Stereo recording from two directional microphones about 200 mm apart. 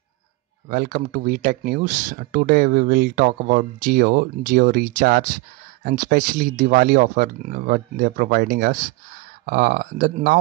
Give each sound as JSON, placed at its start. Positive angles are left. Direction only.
{"t": 0.7, "sound": "speech", "side_deg": -45}